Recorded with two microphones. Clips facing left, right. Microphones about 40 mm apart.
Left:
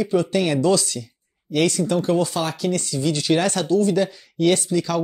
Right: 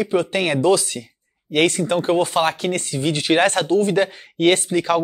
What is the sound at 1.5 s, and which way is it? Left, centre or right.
Speech, right.